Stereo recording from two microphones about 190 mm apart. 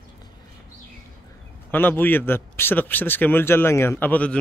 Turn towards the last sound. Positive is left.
turn(degrees=10)  # may be behind; listen again after turning